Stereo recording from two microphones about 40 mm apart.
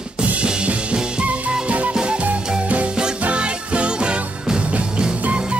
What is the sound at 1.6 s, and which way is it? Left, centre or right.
Music, right.